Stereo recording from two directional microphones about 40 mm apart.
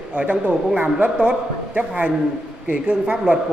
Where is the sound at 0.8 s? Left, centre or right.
Right.